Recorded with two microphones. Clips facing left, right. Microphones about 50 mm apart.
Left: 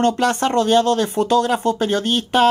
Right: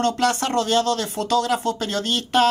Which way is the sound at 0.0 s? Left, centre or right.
Left.